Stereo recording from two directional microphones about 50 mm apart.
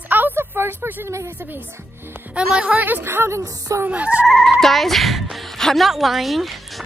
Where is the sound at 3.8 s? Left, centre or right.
Right.